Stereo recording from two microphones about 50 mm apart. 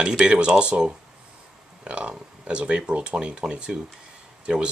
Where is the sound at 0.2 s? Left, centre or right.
Right.